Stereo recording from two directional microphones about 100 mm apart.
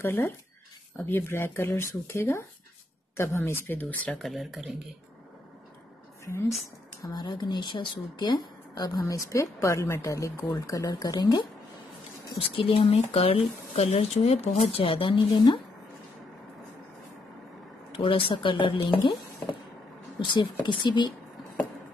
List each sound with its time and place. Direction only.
0.0 s speech: 25° left (ahead or behind)
4.2 s speech: centre (ahead or behind)
7.0 s speech: 40° left (ahead or behind)
9.0 s speech: 30° left (ahead or behind); by 11.4 s 45° left (ahead or behind)
12.4 s speech: 65° left (ahead or behind)
17.9 s speech: 65° left (ahead or behind)
20.3 s speech: 50° left (ahead or behind)